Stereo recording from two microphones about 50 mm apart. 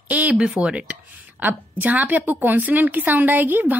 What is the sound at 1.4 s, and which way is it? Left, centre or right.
A woman's voice, right.